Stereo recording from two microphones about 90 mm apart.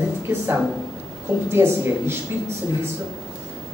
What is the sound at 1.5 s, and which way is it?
Speech, 30° right (ahead or behind).